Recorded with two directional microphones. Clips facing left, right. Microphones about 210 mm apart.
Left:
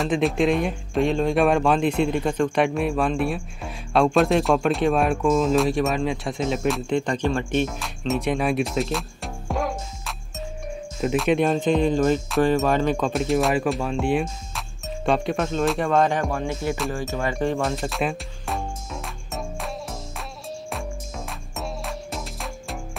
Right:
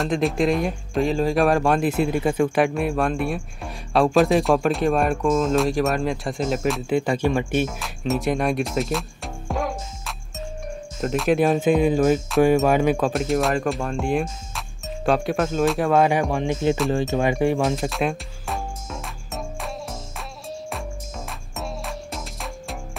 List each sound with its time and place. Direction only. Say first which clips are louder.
0.0 s speech: even; centre (ahead or behind)
17.6 s music: right 2 dB; centre (ahead or behind)
21.3 s music: even; centre (ahead or behind)